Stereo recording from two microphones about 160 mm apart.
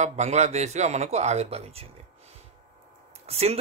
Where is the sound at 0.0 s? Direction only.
45° right (ahead or behind).